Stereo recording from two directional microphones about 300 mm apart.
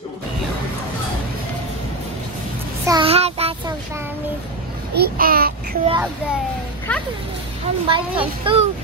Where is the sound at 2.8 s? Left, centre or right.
Centre.